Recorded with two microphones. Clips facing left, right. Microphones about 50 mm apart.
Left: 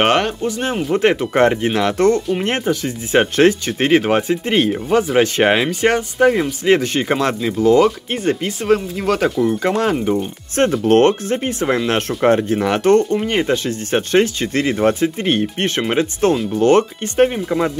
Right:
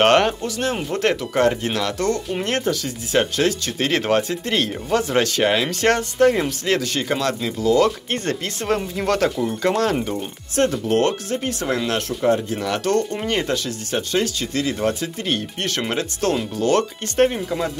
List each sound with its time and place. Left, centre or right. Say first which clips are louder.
0.0 s speech: even; centre
0.4 s speech: left 3 dB; left
5.2 s speech: left 4 dB; left
5.7 s speech: left 3 dB; centre
6.6 s speech: left 6 dB; left
7.8 s speech: left 4 dB; centre
10.8 s speech: left 7 dB; left
11.1 s speech: left 5 dB; left
12.2 s speech: left 5 dB; left
12.5 s speech: left 7 dB; left
13.7 s speech: left 6 dB; left